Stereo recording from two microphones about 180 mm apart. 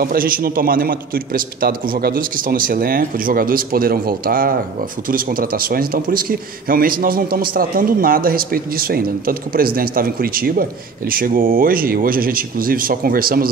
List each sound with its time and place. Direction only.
0.0 s a man's voice: 50° right (ahead or behind)